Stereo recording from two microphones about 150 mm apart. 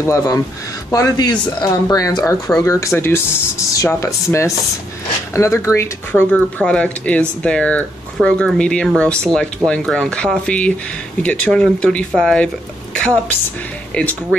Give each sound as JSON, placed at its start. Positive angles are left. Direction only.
{"t": 0.0, "sound": "speech", "side_deg": 20}
{"t": 6.3, "sound": "speech", "side_deg": 5}
{"t": 12.9, "sound": "a sound", "side_deg": 5}